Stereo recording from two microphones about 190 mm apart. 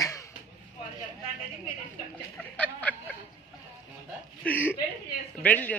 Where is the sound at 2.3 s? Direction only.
10° left (ahead or behind).